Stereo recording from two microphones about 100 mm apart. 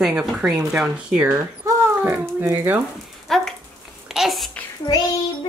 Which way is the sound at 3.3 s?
5° left (ahead or behind).